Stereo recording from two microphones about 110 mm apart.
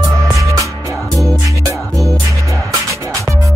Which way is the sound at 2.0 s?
30° right (ahead or behind).